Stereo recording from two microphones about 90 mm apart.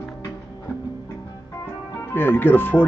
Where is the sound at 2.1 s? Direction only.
25° left (ahead or behind).